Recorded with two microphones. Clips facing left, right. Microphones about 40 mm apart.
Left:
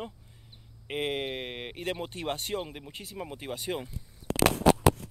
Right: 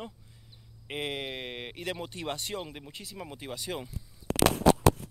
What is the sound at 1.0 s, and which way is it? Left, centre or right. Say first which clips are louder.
Speech: left 3 dB; centre.